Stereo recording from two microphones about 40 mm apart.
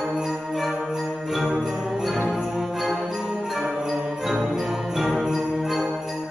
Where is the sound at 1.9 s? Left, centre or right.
Centre.